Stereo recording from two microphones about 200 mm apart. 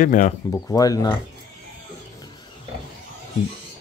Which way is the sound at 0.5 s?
15° left (ahead or behind).